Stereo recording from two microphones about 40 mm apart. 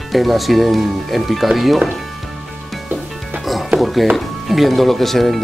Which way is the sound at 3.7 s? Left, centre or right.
Centre.